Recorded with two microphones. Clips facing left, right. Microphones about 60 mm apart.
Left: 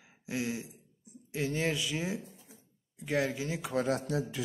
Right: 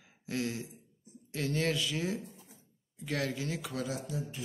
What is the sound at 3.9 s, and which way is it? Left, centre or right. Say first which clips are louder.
Speech: left 7 dB; left.